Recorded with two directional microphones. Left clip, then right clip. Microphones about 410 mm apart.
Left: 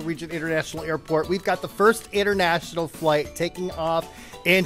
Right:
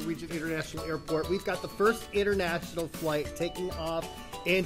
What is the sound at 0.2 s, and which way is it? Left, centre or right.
Speech, left.